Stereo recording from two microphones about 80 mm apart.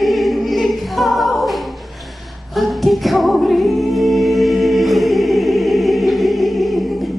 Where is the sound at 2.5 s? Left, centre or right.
Centre.